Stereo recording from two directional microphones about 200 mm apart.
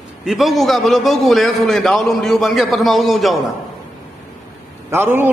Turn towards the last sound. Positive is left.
turn(degrees=-10)  # may be behind; listen again after turning